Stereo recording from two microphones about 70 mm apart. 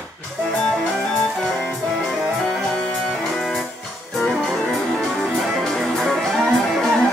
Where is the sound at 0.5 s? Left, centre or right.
Centre.